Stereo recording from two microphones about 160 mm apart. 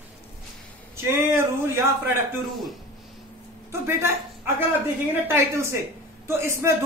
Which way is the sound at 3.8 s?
15° right (ahead or behind).